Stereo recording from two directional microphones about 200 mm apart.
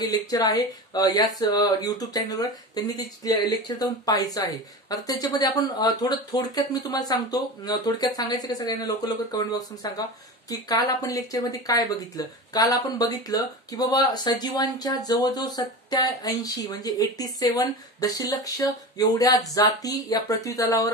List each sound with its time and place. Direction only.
0.0 s speech: 20° left (ahead or behind)